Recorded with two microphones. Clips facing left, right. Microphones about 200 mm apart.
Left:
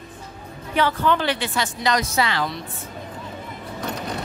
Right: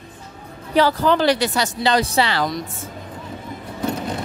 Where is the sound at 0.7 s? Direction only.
35° right (ahead or behind).